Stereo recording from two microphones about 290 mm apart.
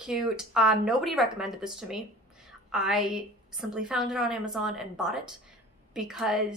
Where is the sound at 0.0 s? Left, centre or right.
Centre.